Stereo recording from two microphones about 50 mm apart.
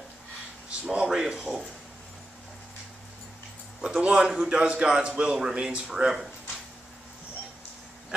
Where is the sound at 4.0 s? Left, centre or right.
Centre.